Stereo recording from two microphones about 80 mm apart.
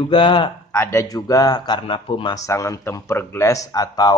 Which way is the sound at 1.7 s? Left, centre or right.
Left.